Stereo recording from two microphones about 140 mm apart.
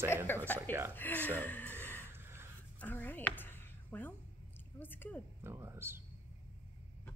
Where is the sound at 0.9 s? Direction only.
15° left (ahead or behind).